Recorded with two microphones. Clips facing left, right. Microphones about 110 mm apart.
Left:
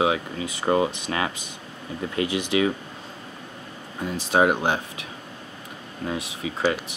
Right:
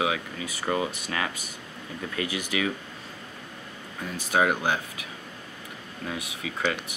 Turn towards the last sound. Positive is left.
turn(degrees=30)  # may be behind; listen again after turning